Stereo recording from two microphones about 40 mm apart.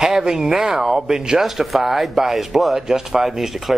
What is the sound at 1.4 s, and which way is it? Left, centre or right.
Speech, centre.